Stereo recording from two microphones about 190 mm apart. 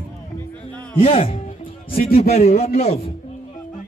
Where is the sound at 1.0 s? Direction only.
30° left (ahead or behind).